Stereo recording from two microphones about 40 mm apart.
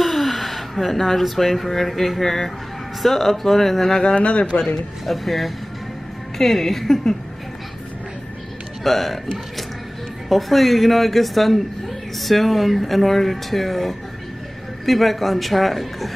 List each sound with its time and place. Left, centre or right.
0.0 s speech: centre
4.0 s speech: left
4.5 s speech: centre
5.0 s speech: centre
8.8 s speech: centre